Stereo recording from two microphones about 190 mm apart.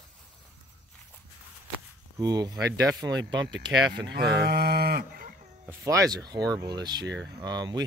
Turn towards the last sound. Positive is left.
turn(degrees=-20)  # may be behind; listen again after turning